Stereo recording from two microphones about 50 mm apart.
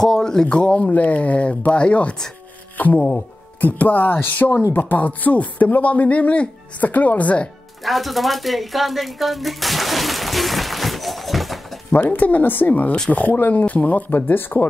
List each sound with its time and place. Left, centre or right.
0.0 s speech: centre
0.5 s speech: left
2.8 s speech: left
7.8 s a sound: centre
11.9 s speech: left